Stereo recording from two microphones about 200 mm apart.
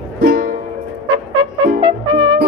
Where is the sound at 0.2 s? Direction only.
45° right (ahead or behind).